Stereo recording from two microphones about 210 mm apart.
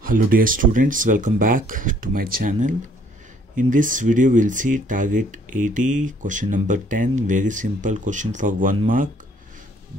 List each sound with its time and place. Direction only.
0.0 s speech: 40° right (ahead or behind)